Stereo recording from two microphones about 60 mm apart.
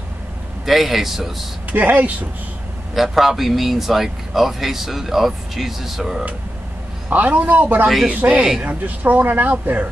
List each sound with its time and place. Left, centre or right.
0.7 s speech: centre
1.7 s speech: right
2.9 s speech: centre
7.1 s speech: right
8.3 s speech: centre
8.6 s speech: right